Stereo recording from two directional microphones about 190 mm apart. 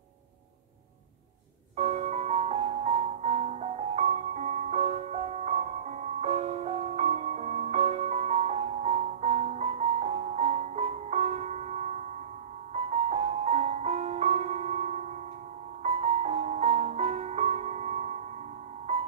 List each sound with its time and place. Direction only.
1.8 s music: 35° right (ahead or behind)